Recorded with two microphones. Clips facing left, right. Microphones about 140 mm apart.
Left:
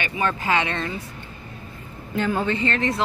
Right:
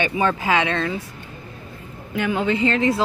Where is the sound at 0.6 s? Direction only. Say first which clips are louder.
Right 4 dB; 90° right.